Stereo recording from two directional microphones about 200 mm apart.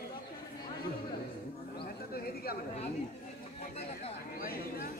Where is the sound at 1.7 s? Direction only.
50° left (ahead or behind).